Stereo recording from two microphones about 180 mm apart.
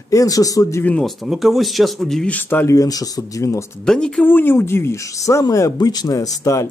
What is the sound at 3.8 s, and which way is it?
Speech, 5° left (ahead or behind).